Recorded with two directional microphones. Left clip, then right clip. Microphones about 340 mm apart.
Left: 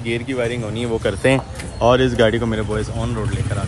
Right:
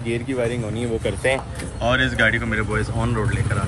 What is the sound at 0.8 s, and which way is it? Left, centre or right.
Speech, left.